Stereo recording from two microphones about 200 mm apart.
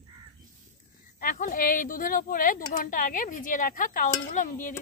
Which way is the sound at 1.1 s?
45° left (ahead or behind).